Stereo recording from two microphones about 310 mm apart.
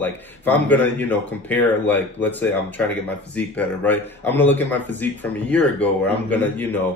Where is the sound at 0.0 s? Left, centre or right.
Centre.